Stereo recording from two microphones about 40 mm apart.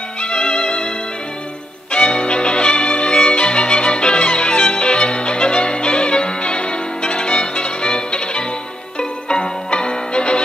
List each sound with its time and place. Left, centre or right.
0.2 s music: left
1.9 s music: left